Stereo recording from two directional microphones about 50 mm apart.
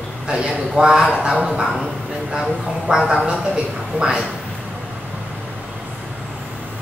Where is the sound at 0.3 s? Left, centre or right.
Centre.